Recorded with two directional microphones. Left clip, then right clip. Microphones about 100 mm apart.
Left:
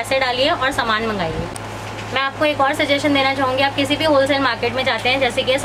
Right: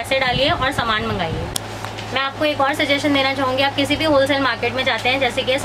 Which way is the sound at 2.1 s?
10° left (ahead or behind).